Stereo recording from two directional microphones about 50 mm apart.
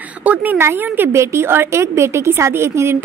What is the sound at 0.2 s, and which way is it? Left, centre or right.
Speech, right.